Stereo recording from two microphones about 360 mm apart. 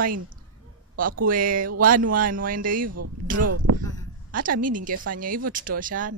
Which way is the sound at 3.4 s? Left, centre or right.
Right.